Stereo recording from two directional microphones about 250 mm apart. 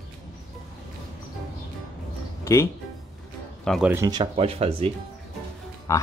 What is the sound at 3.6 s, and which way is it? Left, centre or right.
Speech, centre.